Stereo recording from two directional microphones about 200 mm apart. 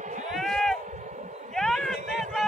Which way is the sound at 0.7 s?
35° right (ahead or behind).